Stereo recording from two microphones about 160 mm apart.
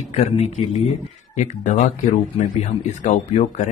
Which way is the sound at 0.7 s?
45° left (ahead or behind).